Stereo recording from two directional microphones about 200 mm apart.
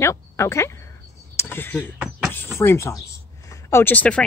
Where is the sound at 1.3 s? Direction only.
10° left (ahead or behind).